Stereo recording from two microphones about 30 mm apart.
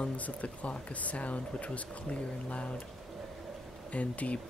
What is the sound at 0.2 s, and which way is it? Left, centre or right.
Speech, left.